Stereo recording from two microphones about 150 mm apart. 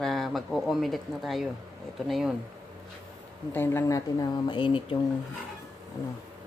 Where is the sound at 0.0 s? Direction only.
Centre (ahead or behind).